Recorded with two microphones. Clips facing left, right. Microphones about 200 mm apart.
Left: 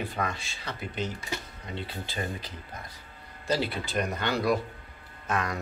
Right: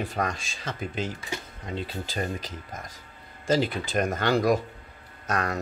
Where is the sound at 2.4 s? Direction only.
45° right (ahead or behind).